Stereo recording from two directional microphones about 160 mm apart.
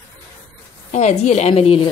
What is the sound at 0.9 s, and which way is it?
Speech, 45° left (ahead or behind).